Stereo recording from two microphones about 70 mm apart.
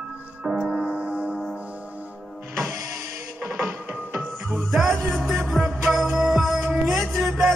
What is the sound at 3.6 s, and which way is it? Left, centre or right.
Music, right.